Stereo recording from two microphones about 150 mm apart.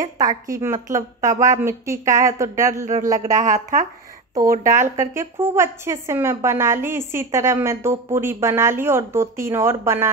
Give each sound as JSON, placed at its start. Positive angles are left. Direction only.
{"t": 0.5, "sound": "a woman's voice", "side_deg": -15}
{"t": 3.3, "sound": "a woman's voice", "side_deg": -55}
{"t": 4.9, "sound": "a woman's voice", "side_deg": -20}